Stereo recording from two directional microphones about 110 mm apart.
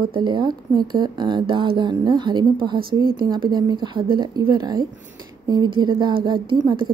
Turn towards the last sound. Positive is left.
turn(degrees=-45)  # may be behind; listen again after turning